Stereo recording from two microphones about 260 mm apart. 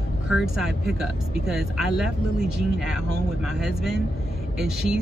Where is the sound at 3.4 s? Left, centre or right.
Centre.